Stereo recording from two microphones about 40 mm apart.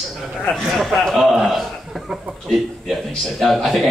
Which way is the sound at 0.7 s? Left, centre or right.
Centre.